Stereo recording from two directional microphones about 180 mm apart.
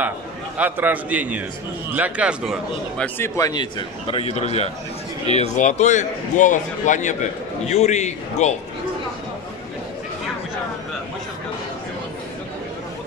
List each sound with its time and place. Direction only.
0.6 s a man's voice: 10° right (ahead or behind)
3.2 s speech: 20° left (ahead or behind); by 8.5 s 40° left (ahead or behind)